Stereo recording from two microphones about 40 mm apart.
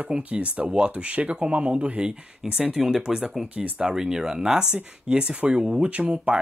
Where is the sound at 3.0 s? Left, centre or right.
Right.